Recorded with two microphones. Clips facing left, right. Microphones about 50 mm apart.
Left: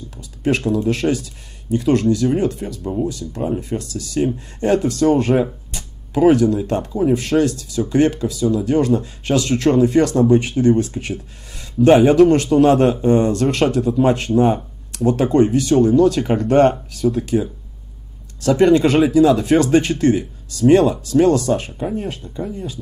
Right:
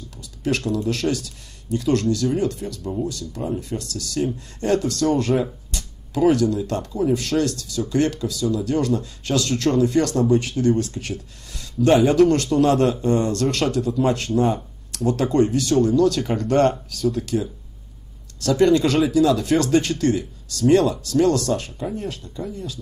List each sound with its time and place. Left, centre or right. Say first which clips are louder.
0.2 s speech: left 5 dB; left